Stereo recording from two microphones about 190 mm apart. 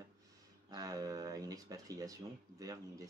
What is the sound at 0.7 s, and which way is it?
Speech, 20° right (ahead or behind).